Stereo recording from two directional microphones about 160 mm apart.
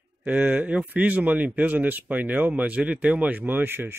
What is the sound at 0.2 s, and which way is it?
A man's voice, 10° right (ahead or behind).